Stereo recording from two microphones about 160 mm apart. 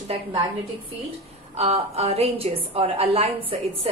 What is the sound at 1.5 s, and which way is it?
A woman's voice, 40° right (ahead or behind).